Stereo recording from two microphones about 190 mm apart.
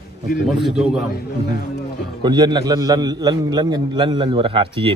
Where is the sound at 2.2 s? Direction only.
20° right (ahead or behind).